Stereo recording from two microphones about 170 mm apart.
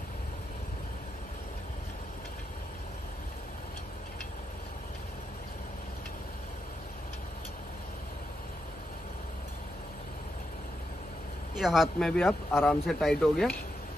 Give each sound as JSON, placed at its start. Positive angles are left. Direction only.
{"t": 11.5, "sound": "speech", "side_deg": 0}
{"t": 12.5, "sound": "speech", "side_deg": 0}